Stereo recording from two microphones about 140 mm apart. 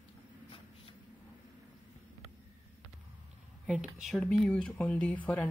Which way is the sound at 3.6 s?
5° right (ahead or behind).